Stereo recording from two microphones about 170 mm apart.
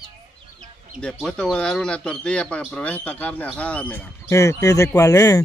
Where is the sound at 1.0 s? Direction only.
5° left (ahead or behind).